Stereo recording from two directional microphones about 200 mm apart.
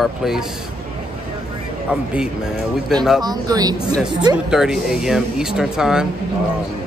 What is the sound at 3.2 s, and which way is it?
Speech, 20° right (ahead or behind).